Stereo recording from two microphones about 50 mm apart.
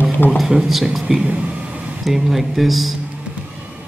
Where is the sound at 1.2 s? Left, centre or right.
Right.